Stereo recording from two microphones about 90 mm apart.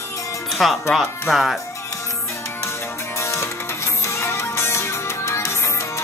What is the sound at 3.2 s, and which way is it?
Music, 30° left (ahead or behind).